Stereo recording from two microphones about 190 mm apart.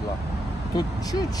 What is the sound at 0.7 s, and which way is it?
Speech, 20° left (ahead or behind).